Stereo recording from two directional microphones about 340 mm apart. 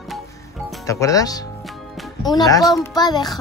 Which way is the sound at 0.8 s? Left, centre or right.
Centre.